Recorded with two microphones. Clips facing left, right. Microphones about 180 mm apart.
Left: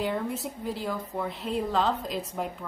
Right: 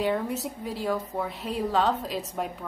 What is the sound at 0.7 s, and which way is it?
A woman's voice, centre (ahead or behind).